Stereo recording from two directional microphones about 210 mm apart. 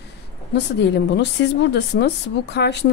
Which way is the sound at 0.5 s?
55° left (ahead or behind).